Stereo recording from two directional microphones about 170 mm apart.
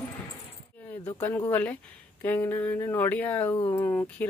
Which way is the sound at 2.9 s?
10° left (ahead or behind).